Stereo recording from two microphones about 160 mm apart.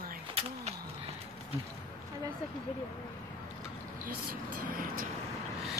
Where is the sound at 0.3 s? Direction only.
40° right (ahead or behind).